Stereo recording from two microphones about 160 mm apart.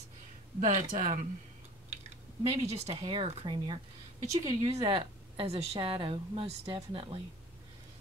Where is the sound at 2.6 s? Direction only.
40° right (ahead or behind).